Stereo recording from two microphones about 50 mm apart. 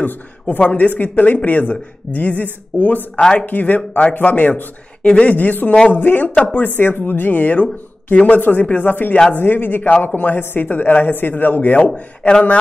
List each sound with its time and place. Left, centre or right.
0.0 s speech: left
5.0 s speech: left
12.2 s speech: centre